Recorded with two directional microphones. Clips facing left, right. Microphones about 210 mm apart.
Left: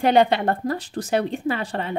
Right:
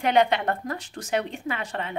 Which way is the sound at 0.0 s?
35° left (ahead or behind).